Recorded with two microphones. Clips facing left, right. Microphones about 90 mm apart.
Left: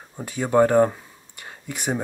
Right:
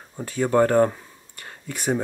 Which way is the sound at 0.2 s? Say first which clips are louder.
Left 1 dB; 15° left (ahead or behind).